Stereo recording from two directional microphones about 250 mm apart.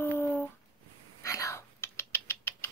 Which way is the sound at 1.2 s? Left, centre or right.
Centre.